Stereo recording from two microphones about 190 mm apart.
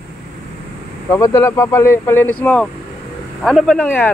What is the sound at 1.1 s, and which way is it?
Speech, 15° left (ahead or behind).